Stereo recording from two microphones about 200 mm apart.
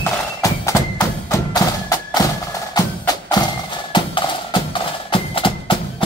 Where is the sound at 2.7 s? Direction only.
20° left (ahead or behind).